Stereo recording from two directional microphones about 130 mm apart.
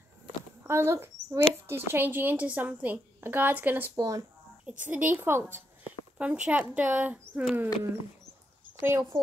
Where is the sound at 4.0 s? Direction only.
25° right (ahead or behind).